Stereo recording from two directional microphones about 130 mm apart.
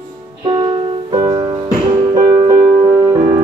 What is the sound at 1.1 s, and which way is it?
Music, 30° right (ahead or behind).